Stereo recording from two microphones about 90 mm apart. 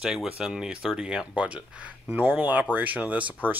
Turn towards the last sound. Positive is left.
turn(degrees=-15)  # may be behind; listen again after turning